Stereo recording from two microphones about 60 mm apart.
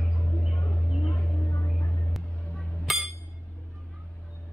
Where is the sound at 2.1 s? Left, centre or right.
Centre.